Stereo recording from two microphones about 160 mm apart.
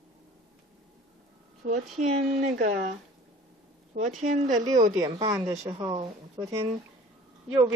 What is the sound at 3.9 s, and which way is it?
Speech, 50° right (ahead or behind).